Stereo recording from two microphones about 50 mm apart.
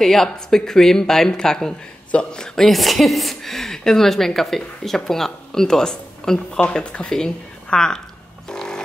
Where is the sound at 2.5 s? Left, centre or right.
Centre.